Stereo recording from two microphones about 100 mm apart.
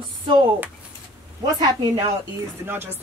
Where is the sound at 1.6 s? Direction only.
40° right (ahead or behind).